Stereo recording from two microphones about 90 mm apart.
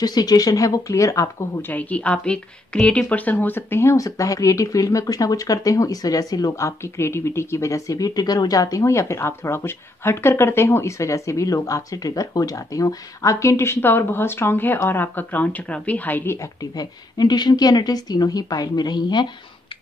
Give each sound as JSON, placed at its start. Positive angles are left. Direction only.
{"t": 0.0, "sound": "a woman's voice", "side_deg": 45}
{"t": 1.6, "sound": "a woman's voice", "side_deg": 20}
{"t": 6.8, "sound": "speech", "side_deg": 30}
{"t": 16.3, "sound": "speech", "side_deg": 50}